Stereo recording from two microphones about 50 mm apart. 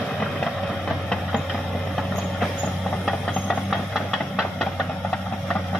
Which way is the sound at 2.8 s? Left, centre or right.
Centre.